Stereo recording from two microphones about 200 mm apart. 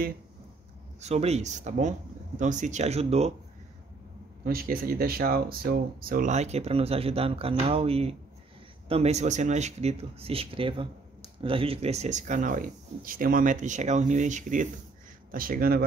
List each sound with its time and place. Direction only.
1.0 s speech: 30° right (ahead or behind)
4.5 s speech: 45° right (ahead or behind)